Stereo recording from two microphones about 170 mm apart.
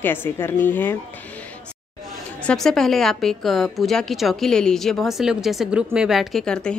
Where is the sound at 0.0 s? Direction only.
15° left (ahead or behind).